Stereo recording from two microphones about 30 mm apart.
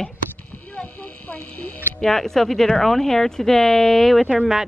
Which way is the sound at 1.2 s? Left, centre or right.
Left.